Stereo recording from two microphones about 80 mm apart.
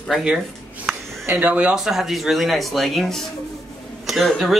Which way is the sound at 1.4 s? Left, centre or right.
Centre.